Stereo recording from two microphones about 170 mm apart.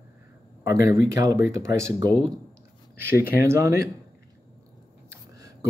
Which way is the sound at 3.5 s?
15° right (ahead or behind).